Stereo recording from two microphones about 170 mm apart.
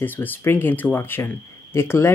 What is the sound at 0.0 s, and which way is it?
Speech, 10° left (ahead or behind).